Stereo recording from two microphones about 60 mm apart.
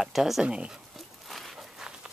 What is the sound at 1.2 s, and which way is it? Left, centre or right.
Walk, centre.